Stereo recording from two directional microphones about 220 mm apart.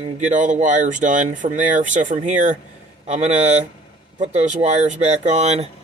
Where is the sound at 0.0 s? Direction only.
35° right (ahead or behind).